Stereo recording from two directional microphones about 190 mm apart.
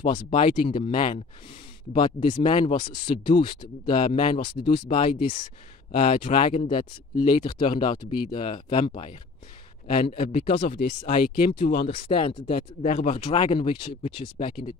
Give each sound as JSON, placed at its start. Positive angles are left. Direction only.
{"t": 0.0, "sound": "speech", "side_deg": 25}
{"t": 6.7, "sound": "speech", "side_deg": 25}
{"t": 10.3, "sound": "speech", "side_deg": 30}
{"t": 10.8, "sound": "speech", "side_deg": 60}
{"t": 11.9, "sound": "speech", "side_deg": 30}
{"t": 12.5, "sound": "speech", "side_deg": 45}
{"t": 13.0, "sound": "speech", "side_deg": 30}